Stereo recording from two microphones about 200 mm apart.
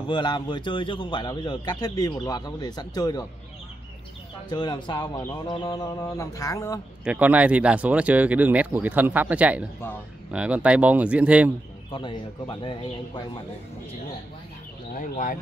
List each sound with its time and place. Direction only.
0.0 s a man's voice: 25° left (ahead or behind)
4.5 s a man's voice: 20° left (ahead or behind)
7.1 s speech: 5° right (ahead or behind)
11.9 s a man's voice: 25° left (ahead or behind)
15.0 s speech: 40° left (ahead or behind)